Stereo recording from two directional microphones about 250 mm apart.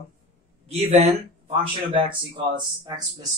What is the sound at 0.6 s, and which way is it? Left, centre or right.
Speech, right.